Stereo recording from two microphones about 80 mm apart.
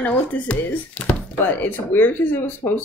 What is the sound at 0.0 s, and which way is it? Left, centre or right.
Speech, centre.